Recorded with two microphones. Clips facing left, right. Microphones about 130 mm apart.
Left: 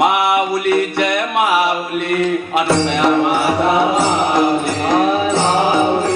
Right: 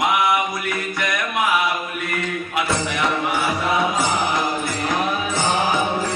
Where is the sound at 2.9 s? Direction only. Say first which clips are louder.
Left 8 dB; 30° left (ahead or behind).